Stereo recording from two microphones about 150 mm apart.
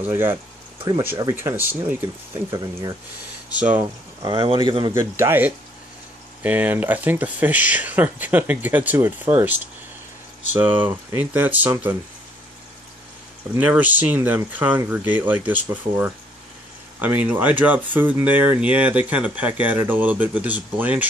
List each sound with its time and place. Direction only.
0.0 s speech: 15° right (ahead or behind)
1.3 s speech: 15° right (ahead or behind)
3.5 s speech: 10° right (ahead or behind)
4.2 s speech: 35° right (ahead or behind)
5.1 s speech: 15° right (ahead or behind)
10.6 s speech: 10° right (ahead or behind)
13.6 s speech: 10° right (ahead or behind)
17.0 s speech: 10° right (ahead or behind)